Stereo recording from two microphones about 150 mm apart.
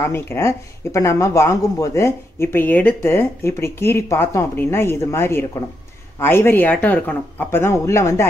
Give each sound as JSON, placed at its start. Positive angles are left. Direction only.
{"t": 0.1, "sound": "speech", "side_deg": 15}